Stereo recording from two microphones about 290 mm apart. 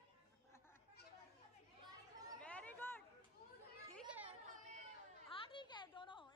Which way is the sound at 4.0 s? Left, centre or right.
Centre.